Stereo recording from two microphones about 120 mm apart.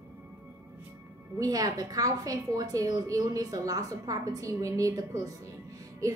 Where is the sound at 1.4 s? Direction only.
30° right (ahead or behind).